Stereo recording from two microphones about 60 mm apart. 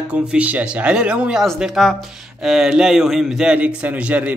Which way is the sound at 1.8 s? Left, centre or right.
Centre.